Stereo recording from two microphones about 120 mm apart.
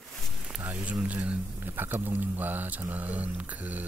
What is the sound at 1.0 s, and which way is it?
Speech, 10° right (ahead or behind).